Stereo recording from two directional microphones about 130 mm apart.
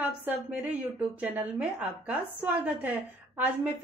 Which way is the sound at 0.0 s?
10° right (ahead or behind).